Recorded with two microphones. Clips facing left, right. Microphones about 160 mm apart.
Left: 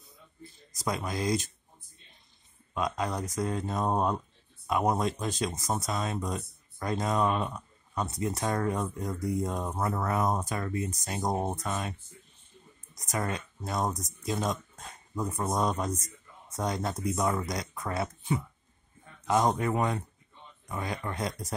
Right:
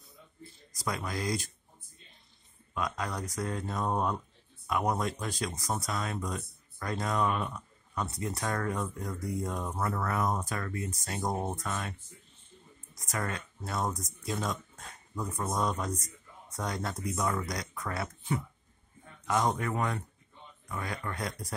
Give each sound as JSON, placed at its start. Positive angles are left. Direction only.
{"t": 0.7, "sound": "speech", "side_deg": 20}
{"t": 2.7, "sound": "speech", "side_deg": 25}